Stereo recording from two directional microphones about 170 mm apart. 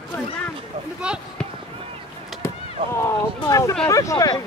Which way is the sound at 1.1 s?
5° right (ahead or behind).